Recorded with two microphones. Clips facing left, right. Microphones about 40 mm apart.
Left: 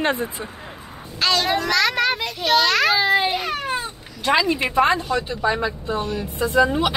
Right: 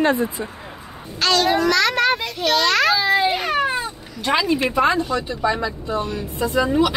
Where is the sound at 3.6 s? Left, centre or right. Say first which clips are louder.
Right 5 dB; right.